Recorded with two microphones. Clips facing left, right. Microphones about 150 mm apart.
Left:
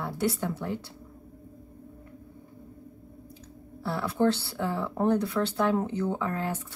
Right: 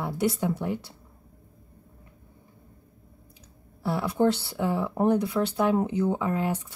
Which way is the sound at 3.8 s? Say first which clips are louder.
Right 2 dB; 15° right (ahead or behind).